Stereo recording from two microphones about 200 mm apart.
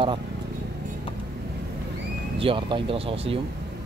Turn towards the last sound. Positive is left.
turn(degrees=-25)  # may be behind; listen again after turning